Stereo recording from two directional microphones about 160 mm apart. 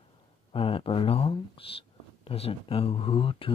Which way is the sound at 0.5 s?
35° left (ahead or behind).